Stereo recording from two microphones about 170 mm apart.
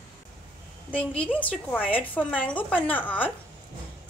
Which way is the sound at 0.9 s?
10° left (ahead or behind).